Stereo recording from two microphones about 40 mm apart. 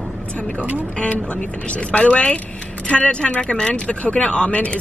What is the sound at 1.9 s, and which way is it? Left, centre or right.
Speech, left.